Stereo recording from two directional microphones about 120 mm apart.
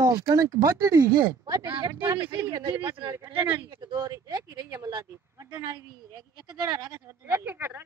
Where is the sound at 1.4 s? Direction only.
35° right (ahead or behind).